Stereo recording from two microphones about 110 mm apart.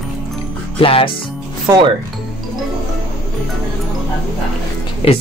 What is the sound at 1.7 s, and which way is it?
Speech, 25° right (ahead or behind).